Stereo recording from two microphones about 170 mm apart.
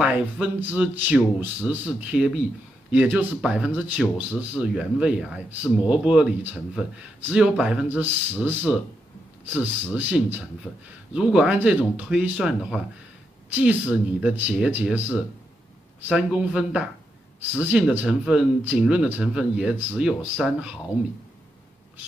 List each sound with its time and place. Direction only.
0.0 s speech: 10° right (ahead or behind)